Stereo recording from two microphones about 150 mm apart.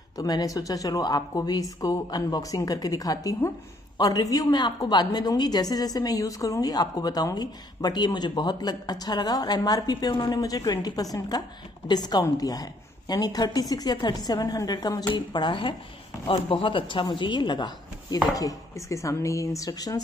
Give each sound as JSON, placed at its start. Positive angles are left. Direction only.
{"t": 0.2, "sound": "a woman's voice", "side_deg": 25}